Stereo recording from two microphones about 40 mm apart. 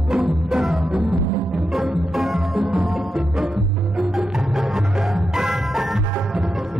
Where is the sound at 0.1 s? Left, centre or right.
Centre.